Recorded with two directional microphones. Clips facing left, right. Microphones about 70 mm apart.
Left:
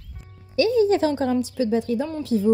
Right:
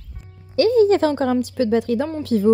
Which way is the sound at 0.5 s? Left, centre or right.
Right.